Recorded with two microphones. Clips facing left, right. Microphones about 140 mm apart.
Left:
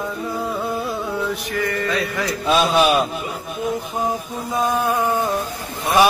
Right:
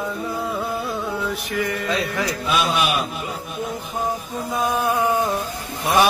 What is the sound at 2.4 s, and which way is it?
Speech, 35° left (ahead or behind).